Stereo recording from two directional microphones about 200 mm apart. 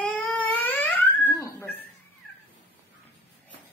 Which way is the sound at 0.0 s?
10° left (ahead or behind).